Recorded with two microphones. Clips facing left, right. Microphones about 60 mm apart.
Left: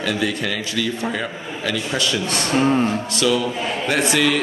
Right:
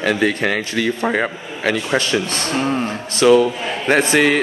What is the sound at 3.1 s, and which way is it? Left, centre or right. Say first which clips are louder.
Speech: right 7 dB; right.